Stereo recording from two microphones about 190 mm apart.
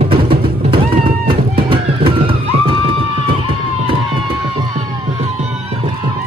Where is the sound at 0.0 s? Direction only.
30° right (ahead or behind).